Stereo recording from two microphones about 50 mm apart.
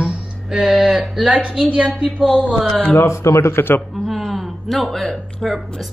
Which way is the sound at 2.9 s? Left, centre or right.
Left.